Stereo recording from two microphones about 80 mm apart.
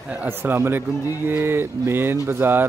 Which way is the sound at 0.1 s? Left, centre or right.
Right.